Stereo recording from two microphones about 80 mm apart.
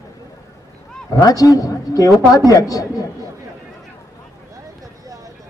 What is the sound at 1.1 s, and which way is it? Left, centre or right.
A man's voice, left.